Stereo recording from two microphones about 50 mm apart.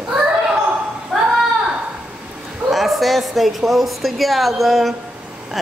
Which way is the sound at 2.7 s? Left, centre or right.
Centre.